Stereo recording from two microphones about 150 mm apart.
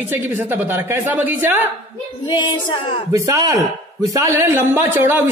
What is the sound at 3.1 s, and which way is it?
A man's voice, 20° right (ahead or behind).